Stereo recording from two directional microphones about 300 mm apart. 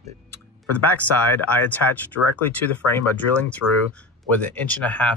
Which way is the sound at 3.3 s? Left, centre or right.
Centre.